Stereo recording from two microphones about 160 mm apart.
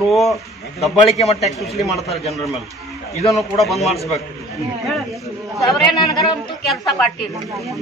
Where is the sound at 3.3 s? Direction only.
Centre (ahead or behind).